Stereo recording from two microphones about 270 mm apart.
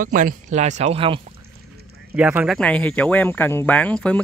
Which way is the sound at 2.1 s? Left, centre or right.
Centre.